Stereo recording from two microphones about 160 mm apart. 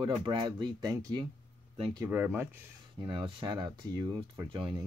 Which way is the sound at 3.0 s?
30° right (ahead or behind).